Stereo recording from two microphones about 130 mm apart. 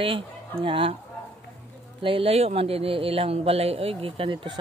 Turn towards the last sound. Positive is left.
turn(degrees=-40)  # may be behind; listen again after turning